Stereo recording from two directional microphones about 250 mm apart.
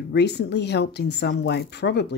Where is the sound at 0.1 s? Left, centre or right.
Left.